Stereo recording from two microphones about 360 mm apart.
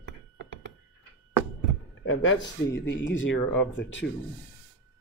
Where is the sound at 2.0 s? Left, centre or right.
Left.